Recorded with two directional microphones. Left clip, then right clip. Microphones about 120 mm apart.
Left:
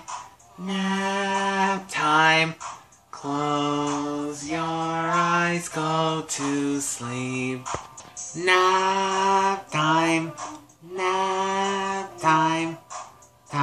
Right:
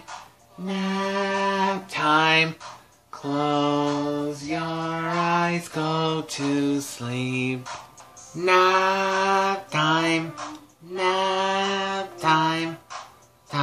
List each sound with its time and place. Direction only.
0.7 s a sound: 50° right (ahead or behind)
3.1 s mantra: 40° right (ahead or behind)
8.4 s mantra: 20° right (ahead or behind)